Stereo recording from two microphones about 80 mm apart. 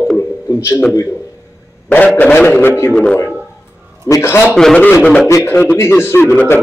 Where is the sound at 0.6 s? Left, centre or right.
Left.